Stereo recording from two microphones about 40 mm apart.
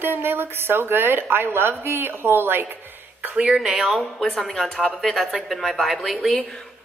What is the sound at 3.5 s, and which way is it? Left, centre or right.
Speech, centre.